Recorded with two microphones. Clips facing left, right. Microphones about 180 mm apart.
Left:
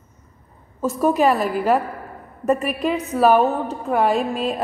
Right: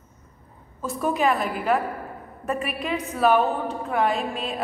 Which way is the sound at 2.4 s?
40° left (ahead or behind).